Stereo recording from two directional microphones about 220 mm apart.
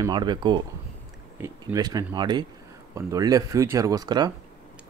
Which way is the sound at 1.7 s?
15° right (ahead or behind).